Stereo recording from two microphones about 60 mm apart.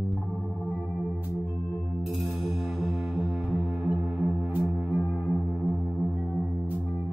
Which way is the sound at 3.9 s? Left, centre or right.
Right.